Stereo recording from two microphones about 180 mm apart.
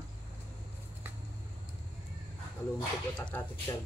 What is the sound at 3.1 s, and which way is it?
Speech, 5° left (ahead or behind).